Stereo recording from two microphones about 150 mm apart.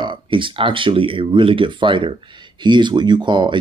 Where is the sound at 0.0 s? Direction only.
35° right (ahead or behind).